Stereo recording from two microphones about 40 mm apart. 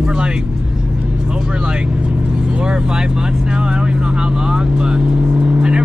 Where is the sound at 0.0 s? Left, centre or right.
Right.